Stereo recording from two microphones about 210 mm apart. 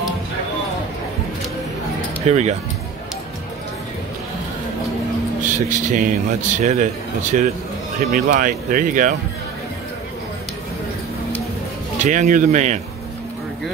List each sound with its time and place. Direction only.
2.2 s a man's voice: 35° right (ahead or behind)
5.4 s a man's voice: 40° right (ahead or behind)
12.0 s a man's voice: 35° right (ahead or behind)